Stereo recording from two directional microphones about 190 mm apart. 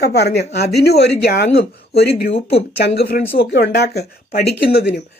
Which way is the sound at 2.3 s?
30° left (ahead or behind).